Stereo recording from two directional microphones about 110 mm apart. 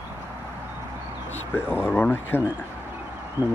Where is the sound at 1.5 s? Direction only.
20° left (ahead or behind).